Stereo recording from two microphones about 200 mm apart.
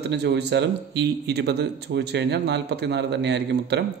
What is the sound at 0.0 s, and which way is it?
A man's voice, 55° right (ahead or behind).